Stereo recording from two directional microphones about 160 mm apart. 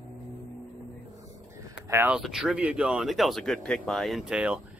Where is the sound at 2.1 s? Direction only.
5° right (ahead or behind).